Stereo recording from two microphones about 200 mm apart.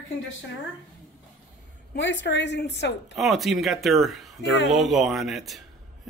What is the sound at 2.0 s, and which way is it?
A woman's voice, 65° left (ahead or behind).